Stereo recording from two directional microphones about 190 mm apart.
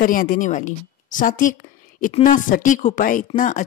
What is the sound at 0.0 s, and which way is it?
A woman's voice, 45° left (ahead or behind).